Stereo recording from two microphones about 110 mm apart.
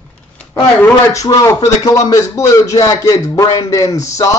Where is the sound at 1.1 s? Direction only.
30° left (ahead or behind).